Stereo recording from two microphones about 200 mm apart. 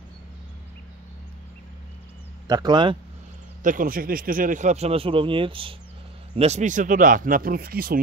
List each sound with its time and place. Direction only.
2.4 s speech: 20° right (ahead or behind)
3.6 s speech: 45° right (ahead or behind)